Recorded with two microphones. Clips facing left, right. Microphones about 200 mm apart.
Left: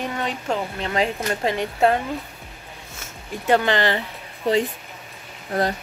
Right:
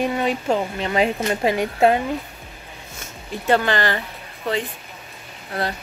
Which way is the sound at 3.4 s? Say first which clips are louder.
Even; 15° left (ahead or behind).